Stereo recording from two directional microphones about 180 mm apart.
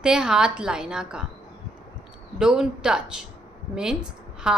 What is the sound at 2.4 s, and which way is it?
Speech, 5° right (ahead or behind).